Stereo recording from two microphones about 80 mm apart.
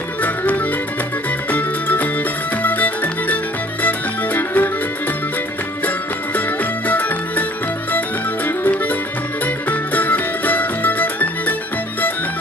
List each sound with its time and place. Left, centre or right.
0.2 s music: left
5.9 s music: left
8.5 s music: left